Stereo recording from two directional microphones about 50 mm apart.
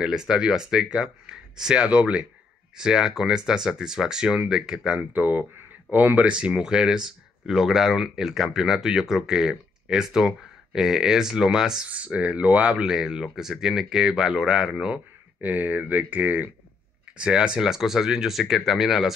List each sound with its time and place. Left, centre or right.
0.0 s speech: centre
5.1 s speech: right
6.2 s speech: right
11.9 s speech: right
12.7 s speech: centre
15.4 s speech: right
17.2 s speech: centre